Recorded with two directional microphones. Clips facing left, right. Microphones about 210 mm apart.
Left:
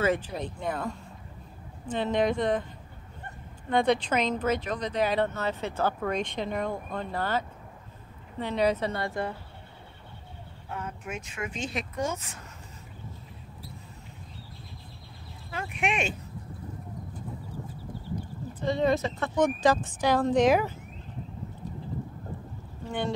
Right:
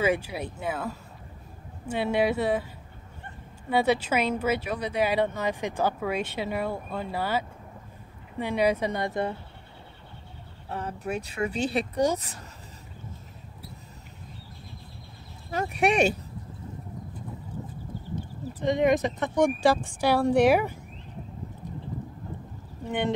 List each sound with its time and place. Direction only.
0.0 s speech: 10° right (ahead or behind)
3.7 s speech: 5° right (ahead or behind)
10.7 s speech: 35° right (ahead or behind)
15.5 s speech: 40° right (ahead or behind)
18.6 s speech: 15° right (ahead or behind)
22.8 s speech: 20° right (ahead or behind)